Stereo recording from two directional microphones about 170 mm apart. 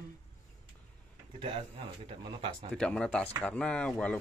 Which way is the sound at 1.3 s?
30° right (ahead or behind).